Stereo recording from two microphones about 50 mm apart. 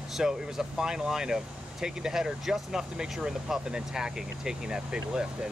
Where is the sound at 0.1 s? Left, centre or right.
Centre.